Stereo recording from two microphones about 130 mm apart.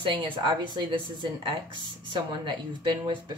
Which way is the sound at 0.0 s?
35° right (ahead or behind).